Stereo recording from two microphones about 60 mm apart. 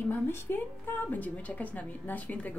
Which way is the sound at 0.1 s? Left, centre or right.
Left.